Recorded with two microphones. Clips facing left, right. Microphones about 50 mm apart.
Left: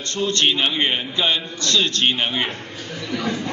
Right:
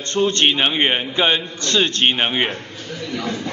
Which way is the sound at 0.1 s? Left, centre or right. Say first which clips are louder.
Right 3 dB; right.